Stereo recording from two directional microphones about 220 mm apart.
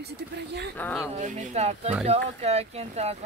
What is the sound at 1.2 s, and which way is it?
Speech, 30° right (ahead or behind).